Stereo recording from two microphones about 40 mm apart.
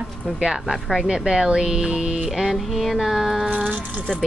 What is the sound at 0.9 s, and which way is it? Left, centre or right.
Speech, centre.